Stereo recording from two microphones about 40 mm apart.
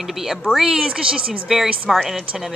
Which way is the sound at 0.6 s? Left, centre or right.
Centre.